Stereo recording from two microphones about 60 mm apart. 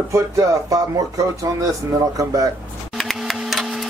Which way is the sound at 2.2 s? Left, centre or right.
Right.